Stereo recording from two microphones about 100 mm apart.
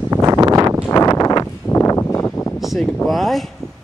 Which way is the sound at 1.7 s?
25° left (ahead or behind).